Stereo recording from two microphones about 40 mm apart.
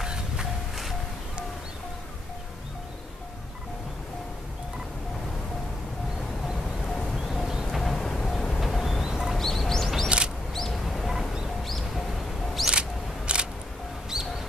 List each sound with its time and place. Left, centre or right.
0.0 s music: centre
6.9 s a sound: centre
7.7 s music: centre
9.0 s bird: centre
9.3 s bird: centre
10.0 s a sound: right
10.5 s music: centre
13.3 s single-lens reflex camera: right
14.1 s music: centre